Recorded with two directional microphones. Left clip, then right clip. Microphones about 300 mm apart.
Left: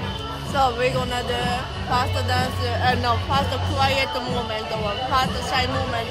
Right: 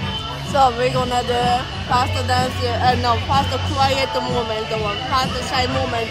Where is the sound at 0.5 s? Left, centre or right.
Centre.